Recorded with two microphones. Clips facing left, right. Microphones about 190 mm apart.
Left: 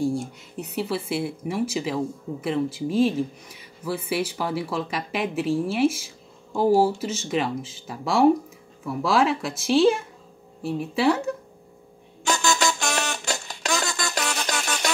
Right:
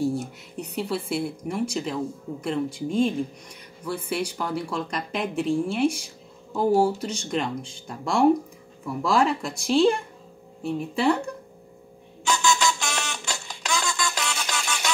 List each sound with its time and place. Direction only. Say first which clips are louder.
0.0 s speech: left 1 dB; centre (ahead or behind)
12.3 s music: even; 45° left (ahead or behind)